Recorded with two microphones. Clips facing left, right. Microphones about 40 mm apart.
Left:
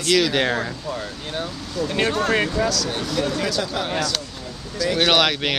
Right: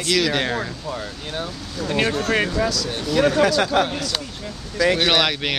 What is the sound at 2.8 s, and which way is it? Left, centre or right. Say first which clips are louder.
Speech: even; centre.